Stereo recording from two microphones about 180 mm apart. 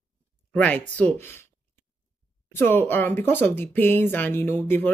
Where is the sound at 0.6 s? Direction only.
10° left (ahead or behind).